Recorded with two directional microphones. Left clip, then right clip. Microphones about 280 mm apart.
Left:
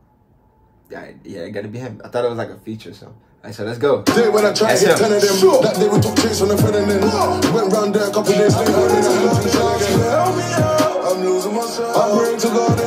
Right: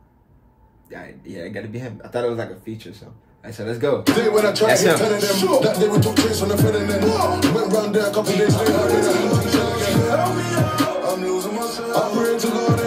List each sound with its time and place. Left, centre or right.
1.3 s speech: centre
3.4 s speech: centre
4.0 s music: left
4.6 s speech: centre
5.0 s music: left